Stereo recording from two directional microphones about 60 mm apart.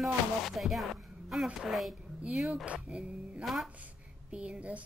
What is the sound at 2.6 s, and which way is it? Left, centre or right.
Speech, centre.